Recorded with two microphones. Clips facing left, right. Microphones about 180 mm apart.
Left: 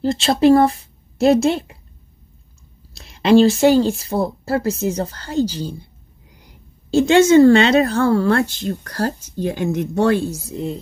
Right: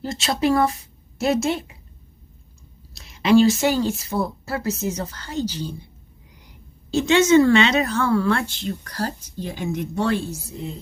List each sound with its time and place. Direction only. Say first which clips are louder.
0.0 s a woman's voice: left 8 dB; 30° left (ahead or behind)
3.2 s speech: left 3 dB; 30° left (ahead or behind)
6.9 s speech: left 4 dB; 30° left (ahead or behind); by 10.1 s 50° left (ahead or behind)